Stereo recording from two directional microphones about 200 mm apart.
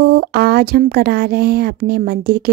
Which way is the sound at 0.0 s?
50° right (ahead or behind).